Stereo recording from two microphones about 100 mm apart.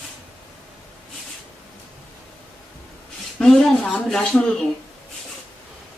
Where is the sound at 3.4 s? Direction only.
5° left (ahead or behind).